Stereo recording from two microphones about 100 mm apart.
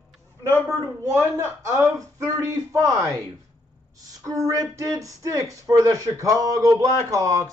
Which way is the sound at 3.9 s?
35° right (ahead or behind).